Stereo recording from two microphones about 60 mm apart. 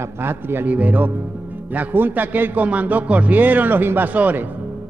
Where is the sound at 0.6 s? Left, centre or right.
Right.